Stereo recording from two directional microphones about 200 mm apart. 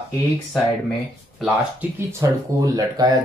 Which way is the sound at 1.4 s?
10° right (ahead or behind).